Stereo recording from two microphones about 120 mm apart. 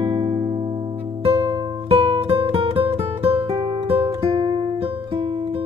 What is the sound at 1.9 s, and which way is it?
Music, 55° right (ahead or behind).